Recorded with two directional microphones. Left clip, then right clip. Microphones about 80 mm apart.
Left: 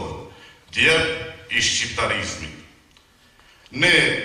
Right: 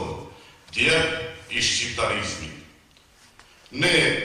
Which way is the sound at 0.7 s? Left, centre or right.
Left.